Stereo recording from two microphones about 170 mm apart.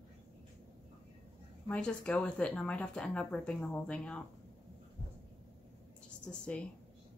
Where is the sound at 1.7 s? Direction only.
5° left (ahead or behind).